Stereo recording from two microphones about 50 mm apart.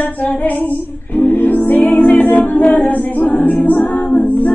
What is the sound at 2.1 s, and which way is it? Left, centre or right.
A capella, left.